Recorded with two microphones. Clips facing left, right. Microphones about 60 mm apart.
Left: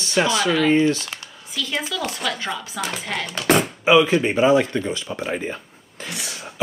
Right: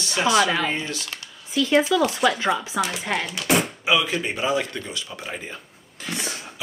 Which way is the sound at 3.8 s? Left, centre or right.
Left.